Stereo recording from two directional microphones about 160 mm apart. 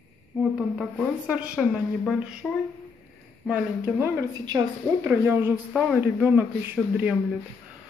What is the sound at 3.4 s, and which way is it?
A woman's voice, 10° right (ahead or behind).